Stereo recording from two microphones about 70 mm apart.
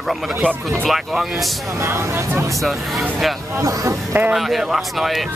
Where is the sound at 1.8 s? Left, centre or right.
Right.